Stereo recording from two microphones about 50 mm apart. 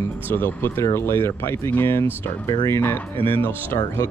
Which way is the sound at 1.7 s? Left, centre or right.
Left.